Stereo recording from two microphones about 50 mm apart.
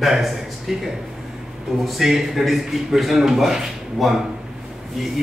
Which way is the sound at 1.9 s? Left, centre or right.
Centre.